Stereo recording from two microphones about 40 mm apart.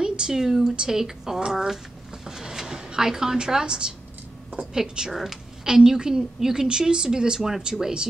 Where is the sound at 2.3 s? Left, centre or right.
Centre.